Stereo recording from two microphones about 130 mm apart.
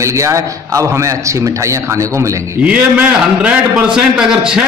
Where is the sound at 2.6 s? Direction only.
10° right (ahead or behind).